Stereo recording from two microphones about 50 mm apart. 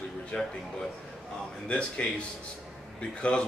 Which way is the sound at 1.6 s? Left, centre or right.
Left.